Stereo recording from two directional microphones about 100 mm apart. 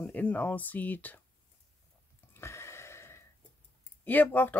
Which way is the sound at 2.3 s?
25° left (ahead or behind).